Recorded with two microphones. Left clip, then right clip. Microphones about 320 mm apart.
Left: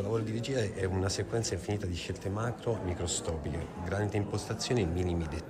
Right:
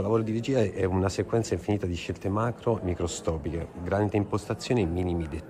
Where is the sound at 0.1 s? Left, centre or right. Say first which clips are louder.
Right 8 dB; centre.